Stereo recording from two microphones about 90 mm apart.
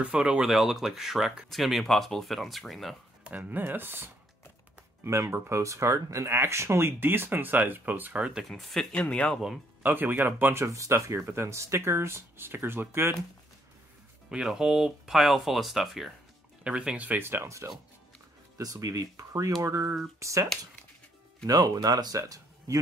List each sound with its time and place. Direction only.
0.0 s speech: 10° right (ahead or behind)
3.3 s speech: 20° right (ahead or behind); by 8.8 s centre (ahead or behind)
8.9 s speech: 15° left (ahead or behind)
9.8 s speech: 20° right (ahead or behind)
14.3 s speech: 5° right (ahead or behind)
16.6 s speech: 10° right (ahead or behind); by 20.4 s 35° right (ahead or behind)
21.5 s speech: 45° right (ahead or behind)